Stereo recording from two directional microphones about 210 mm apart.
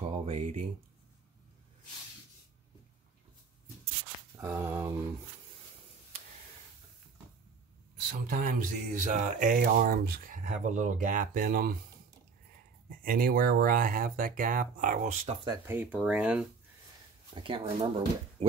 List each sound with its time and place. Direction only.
0.2 s speech: 30° right (ahead or behind)
4.4 s speech: 15° right (ahead or behind)
8.1 s speech: 40° right (ahead or behind)
13.0 s speech: 40° right (ahead or behind)
15.4 s speech: 10° right (ahead or behind)
17.4 s speech: 25° right (ahead or behind)